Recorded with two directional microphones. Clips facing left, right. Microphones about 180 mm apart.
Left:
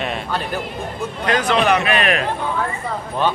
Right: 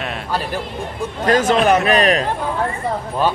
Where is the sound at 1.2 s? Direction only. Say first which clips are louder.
Right 3 dB; 45° right (ahead or behind).